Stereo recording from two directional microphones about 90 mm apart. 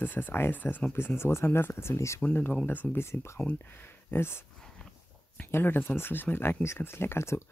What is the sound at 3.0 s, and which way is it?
Speech, 30° left (ahead or behind).